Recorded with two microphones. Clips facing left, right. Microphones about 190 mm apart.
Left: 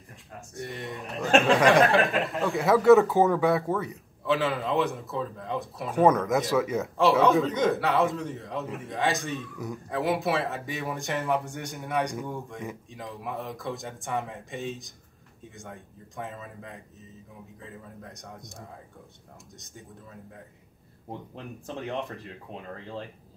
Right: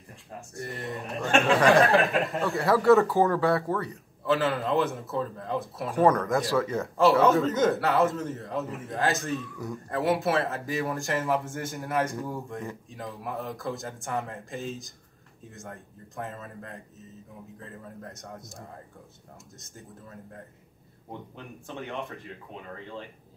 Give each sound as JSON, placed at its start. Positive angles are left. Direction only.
{"t": 0.6, "sound": "a man's voice", "side_deg": 0}
{"t": 3.2, "sound": "speech", "side_deg": 20}
{"t": 3.9, "sound": "a man's voice", "side_deg": 0}
{"t": 21.6, "sound": "a man's voice", "side_deg": 0}